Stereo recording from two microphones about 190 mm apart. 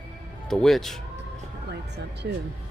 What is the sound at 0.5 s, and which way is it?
Speech, centre (ahead or behind).